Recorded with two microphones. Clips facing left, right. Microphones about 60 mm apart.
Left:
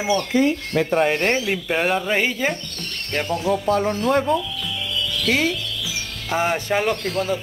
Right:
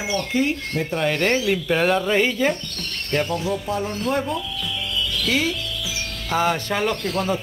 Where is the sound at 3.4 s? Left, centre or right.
Left.